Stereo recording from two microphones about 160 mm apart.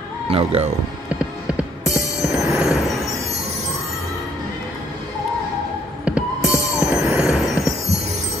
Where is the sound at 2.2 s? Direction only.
Centre (ahead or behind).